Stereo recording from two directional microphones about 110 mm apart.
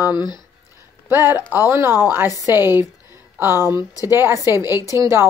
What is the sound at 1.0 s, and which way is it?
Speech, 20° right (ahead or behind).